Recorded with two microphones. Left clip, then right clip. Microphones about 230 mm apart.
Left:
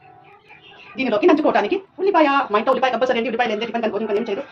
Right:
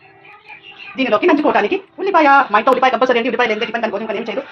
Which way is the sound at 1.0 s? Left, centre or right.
Right.